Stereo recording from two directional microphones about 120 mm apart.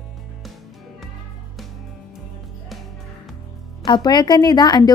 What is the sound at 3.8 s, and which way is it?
A woman's voice, 40° left (ahead or behind).